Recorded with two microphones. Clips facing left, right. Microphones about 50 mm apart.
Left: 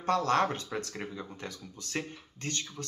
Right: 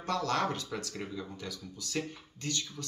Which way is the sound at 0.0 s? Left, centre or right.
Left.